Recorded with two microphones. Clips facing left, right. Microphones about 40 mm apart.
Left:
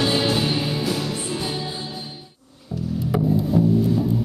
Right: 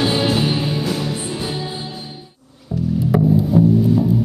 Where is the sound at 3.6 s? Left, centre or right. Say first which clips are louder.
Right 5 dB; right.